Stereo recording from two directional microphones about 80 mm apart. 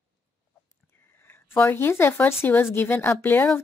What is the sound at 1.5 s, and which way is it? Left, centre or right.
A woman's voice, left.